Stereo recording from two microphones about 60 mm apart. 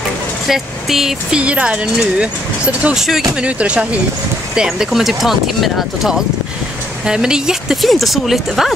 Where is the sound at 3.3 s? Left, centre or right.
Centre.